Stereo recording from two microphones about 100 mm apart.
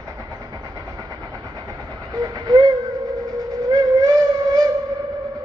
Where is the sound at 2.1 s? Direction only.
40° right (ahead or behind).